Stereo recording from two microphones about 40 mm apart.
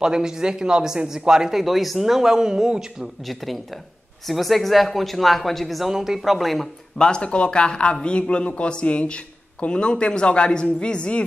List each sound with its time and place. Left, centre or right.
0.0 s speech: centre
3.3 s speech: centre
5.9 s speech: centre
7.0 s a man's voice: left